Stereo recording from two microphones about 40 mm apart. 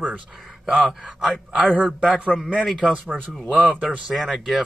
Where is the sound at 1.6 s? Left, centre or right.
Right.